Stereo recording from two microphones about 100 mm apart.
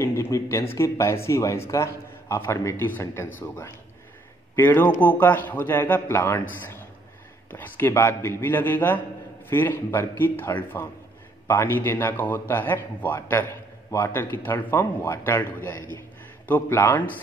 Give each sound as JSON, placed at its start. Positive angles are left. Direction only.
{"t": 0.0, "sound": "a man's voice", "side_deg": 25}